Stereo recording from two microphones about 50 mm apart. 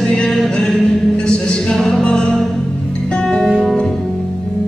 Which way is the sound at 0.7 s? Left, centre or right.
Left.